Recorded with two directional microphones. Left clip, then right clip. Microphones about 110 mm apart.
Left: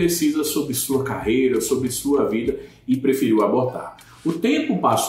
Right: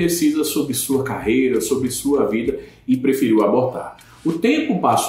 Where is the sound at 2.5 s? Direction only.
Centre (ahead or behind).